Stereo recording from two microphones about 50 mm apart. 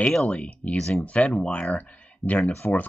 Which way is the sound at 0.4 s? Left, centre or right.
Left.